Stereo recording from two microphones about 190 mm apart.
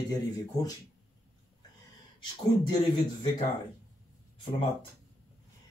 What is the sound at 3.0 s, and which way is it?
Speech, 25° left (ahead or behind).